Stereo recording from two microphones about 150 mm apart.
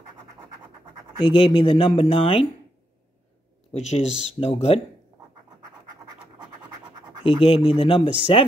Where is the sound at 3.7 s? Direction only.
50° left (ahead or behind).